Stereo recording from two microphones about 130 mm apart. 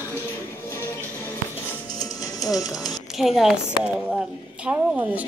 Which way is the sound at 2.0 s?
30° left (ahead or behind).